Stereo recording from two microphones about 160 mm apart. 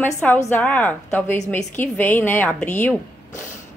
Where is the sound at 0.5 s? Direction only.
10° left (ahead or behind).